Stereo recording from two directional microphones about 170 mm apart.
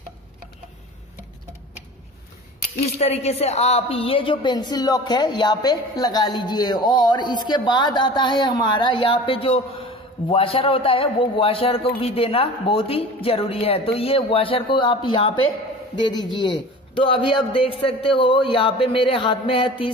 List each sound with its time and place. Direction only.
3.0 s a woman's voice: 40° left (ahead or behind)